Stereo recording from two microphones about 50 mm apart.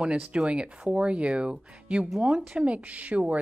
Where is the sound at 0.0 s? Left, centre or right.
Right.